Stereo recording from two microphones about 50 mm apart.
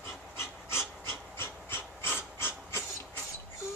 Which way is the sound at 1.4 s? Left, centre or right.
Left.